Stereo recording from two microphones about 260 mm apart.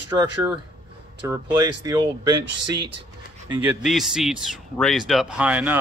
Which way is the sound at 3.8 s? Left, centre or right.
Centre.